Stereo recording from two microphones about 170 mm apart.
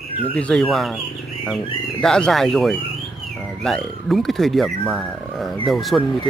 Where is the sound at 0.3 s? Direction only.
5° left (ahead or behind).